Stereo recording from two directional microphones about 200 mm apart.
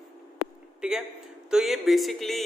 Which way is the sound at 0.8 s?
5° right (ahead or behind).